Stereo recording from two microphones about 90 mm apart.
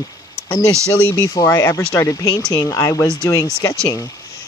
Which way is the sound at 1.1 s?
40° left (ahead or behind).